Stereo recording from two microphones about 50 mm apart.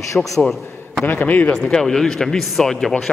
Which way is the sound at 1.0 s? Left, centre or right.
Left.